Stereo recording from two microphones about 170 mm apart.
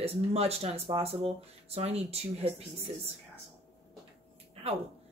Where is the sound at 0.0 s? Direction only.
35° right (ahead or behind).